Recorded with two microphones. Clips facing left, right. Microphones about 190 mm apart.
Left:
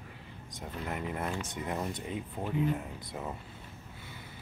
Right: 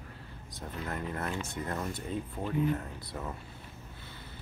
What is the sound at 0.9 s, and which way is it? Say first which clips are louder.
Speech: left 1 dB; 15° left (ahead or behind).